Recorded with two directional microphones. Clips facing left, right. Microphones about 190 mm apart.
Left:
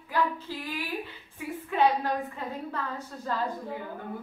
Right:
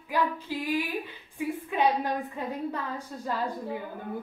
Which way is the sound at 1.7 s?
15° right (ahead or behind).